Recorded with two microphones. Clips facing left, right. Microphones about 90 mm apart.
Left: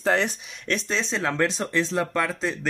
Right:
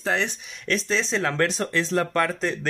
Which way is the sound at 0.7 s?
25° left (ahead or behind).